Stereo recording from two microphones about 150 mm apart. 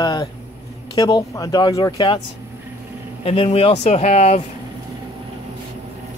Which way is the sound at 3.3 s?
45° left (ahead or behind).